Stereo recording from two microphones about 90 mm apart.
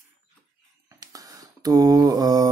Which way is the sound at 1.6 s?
40° right (ahead or behind).